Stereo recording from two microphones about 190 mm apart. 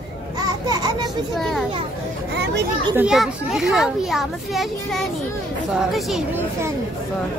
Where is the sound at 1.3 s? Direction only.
Centre (ahead or behind).